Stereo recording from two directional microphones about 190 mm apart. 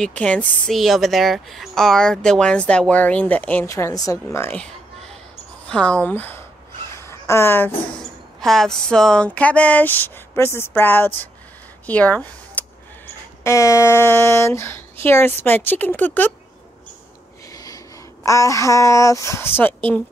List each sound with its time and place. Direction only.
0.0 s speech: 5° left (ahead or behind)
7.0 s a sound: 15° left (ahead or behind)
8.4 s speech: centre (ahead or behind)
11.8 s a sound: 5° left (ahead or behind)
13.4 s speech: 15° left (ahead or behind)
17.5 s speech: 20° left (ahead or behind)